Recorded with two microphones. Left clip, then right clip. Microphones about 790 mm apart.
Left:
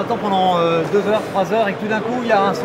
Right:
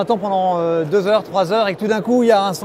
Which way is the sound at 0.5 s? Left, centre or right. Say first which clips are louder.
Left 1 dB; right.